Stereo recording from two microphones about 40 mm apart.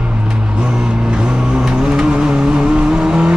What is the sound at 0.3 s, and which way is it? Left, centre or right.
Vehicle, right.